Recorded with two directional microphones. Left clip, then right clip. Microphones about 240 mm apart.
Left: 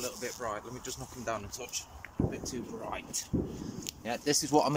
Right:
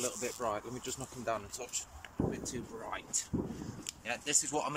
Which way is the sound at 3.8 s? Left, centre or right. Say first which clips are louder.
Left 4 dB; left.